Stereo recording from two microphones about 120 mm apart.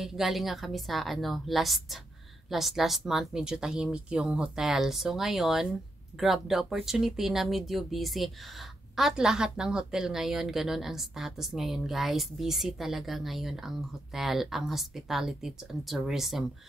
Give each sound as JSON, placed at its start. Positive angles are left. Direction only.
{"t": 0.0, "sound": "speech", "side_deg": 0}